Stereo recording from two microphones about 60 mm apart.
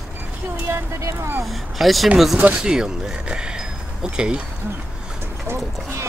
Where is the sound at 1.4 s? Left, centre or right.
Centre.